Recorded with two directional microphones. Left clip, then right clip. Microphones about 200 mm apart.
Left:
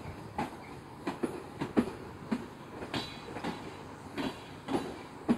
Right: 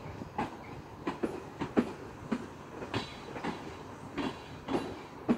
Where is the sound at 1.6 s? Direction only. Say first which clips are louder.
Even; 25° left (ahead or behind).